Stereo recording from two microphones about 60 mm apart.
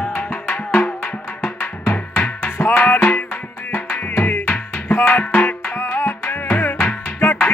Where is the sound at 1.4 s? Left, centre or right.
Left.